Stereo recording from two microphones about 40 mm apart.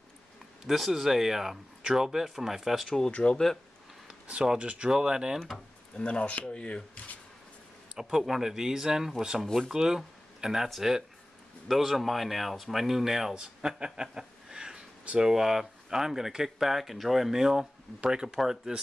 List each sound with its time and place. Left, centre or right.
0.7 s speech: centre
3.1 s speech: left
4.1 s speech: right
5.9 s speech: left
7.9 s speech: centre